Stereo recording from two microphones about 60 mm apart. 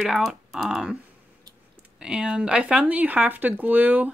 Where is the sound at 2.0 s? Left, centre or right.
Centre.